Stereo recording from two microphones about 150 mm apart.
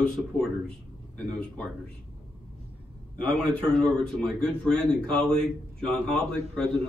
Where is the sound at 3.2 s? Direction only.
5° left (ahead or behind).